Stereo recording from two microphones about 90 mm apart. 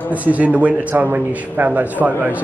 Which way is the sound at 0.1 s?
15° right (ahead or behind).